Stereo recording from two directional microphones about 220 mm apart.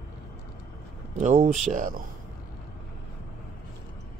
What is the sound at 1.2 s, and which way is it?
Speech, 35° right (ahead or behind).